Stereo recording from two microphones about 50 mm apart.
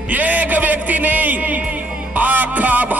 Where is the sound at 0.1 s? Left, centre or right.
Right.